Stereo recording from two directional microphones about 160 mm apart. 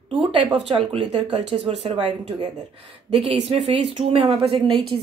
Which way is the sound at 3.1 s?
40° right (ahead or behind).